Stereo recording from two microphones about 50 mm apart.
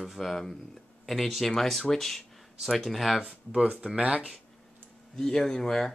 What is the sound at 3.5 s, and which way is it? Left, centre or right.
Speech, right.